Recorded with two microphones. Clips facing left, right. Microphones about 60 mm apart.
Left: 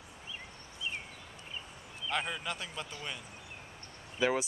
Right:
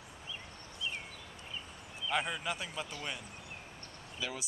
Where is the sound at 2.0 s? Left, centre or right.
Centre.